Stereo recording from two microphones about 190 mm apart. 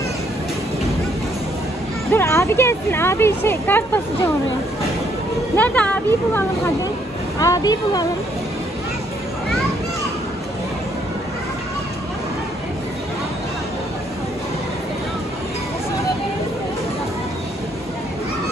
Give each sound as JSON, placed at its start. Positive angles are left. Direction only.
{"t": 2.0, "sound": "speech", "side_deg": 15}
{"t": 5.6, "sound": "speech", "side_deg": 5}